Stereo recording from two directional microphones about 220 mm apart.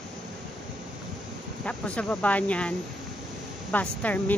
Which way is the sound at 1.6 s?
5° left (ahead or behind).